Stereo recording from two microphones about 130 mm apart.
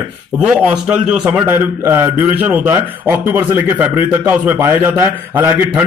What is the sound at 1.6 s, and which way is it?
A man's voice, 15° right (ahead or behind).